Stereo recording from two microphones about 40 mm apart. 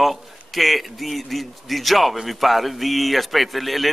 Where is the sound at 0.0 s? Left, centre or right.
Centre.